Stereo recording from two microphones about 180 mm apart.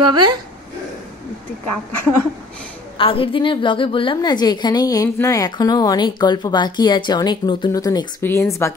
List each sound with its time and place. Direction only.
0.0 s a woman's voice: 25° right (ahead or behind)
3.0 s a woman's voice: 30° left (ahead or behind)